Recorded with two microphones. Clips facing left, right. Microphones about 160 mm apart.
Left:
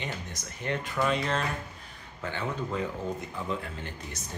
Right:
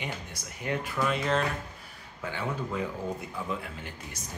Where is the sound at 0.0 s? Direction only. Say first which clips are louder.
Left 1 dB; 10° right (ahead or behind).